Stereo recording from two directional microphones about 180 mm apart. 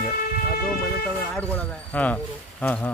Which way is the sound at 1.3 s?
5° left (ahead or behind).